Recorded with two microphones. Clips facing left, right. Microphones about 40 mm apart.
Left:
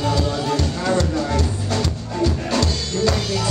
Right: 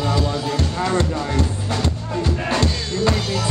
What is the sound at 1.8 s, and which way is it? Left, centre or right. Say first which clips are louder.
Music: left 1 dB; right.